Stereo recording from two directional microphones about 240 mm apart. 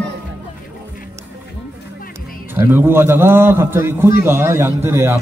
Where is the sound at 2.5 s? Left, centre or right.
Centre.